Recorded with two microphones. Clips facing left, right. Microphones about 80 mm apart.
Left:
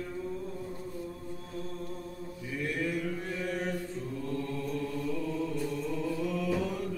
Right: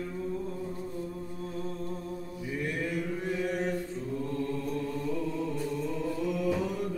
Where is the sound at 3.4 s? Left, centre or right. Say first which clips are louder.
Right 3 dB; centre.